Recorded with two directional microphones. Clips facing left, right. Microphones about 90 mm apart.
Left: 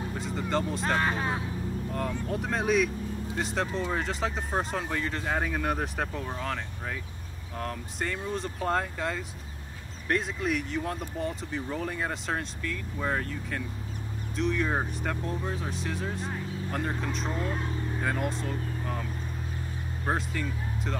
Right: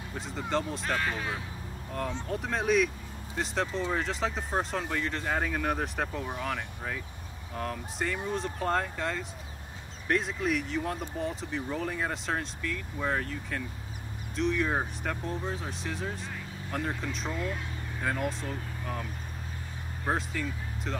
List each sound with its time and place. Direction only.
0.1 s speech: centre (ahead or behind)
0.8 s speech: 35° left (ahead or behind)
1.9 s speech: centre (ahead or behind)
6.2 s speech: 10° right (ahead or behind)
17.3 s speech: 35° left (ahead or behind)
18.0 s speech: centre (ahead or behind)
20.1 s speech: centre (ahead or behind)